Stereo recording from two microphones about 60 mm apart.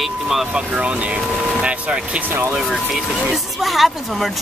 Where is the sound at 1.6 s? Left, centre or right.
Centre.